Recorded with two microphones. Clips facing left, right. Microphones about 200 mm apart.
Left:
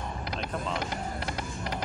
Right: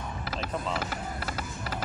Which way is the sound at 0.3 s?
5° right (ahead or behind).